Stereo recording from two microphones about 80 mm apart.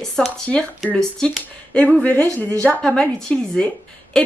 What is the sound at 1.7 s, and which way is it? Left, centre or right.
Speech, centre.